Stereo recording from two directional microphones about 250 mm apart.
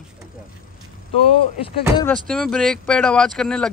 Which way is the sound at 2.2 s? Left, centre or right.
Centre.